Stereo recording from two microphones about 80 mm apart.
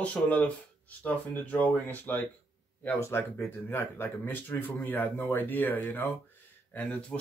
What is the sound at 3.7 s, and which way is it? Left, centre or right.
Speech, left.